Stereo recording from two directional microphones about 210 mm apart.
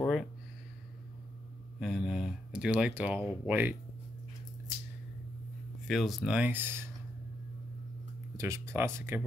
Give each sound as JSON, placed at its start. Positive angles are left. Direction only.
{"t": 0.0, "sound": "a sound", "side_deg": 0}
{"t": 1.8, "sound": "speech", "side_deg": 0}
{"t": 5.9, "sound": "speech", "side_deg": 0}
{"t": 8.4, "sound": "speech", "side_deg": -15}